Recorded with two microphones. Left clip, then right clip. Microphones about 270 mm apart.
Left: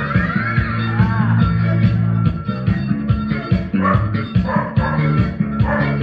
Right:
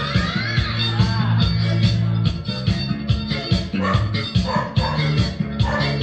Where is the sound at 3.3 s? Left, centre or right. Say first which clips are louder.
Even; right.